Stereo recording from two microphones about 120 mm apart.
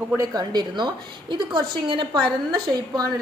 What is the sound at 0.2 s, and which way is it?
A woman's voice, 30° right (ahead or behind).